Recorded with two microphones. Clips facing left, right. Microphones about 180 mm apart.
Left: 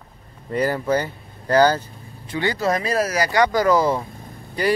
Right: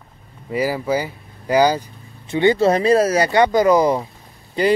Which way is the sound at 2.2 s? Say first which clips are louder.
Right 7 dB; 25° right (ahead or behind).